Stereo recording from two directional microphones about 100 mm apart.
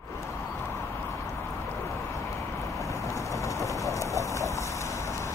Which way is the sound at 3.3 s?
30° left (ahead or behind).